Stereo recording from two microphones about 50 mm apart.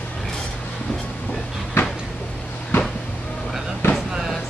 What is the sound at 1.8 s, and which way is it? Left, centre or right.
Cupboard open or close, left.